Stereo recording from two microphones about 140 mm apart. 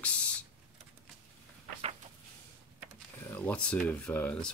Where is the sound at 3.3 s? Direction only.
10° left (ahead or behind).